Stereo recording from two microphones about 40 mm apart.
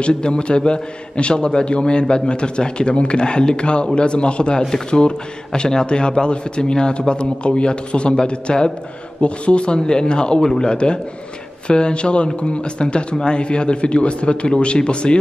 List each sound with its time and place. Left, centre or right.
0.0 s a man's voice: left